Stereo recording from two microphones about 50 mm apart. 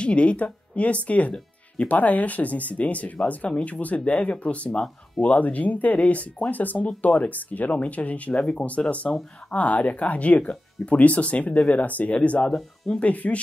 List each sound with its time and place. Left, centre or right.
0.0 s speech: left
12.5 s speech: centre
13.0 s speech: left